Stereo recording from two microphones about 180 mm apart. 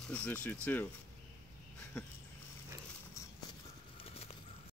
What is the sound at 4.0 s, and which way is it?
Horse, 35° left (ahead or behind).